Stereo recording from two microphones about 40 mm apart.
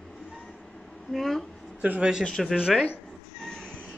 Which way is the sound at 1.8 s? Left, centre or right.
Right.